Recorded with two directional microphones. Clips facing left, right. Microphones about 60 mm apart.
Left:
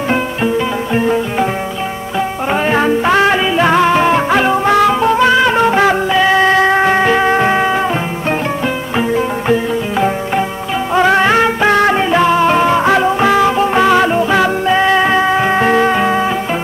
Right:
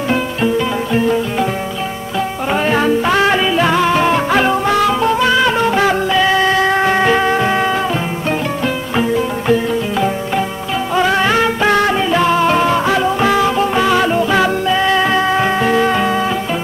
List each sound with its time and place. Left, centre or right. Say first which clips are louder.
2.1 s music: left 1 dB; centre
6.3 s music: left 3 dB; left; by 7.2 s centre
7.2 s music: left 3 dB; left
7.5 s music: left 2 dB; left
10.9 s music: left 3 dB; left
11.8 s music: left 3 dB; left
12.2 s music: left 2 dB; centre
12.8 s music: left 3 dB; left
13.2 s music: left 2 dB; left
15.5 s music: left 2 dB; left
15.9 s music: left 2 dB; left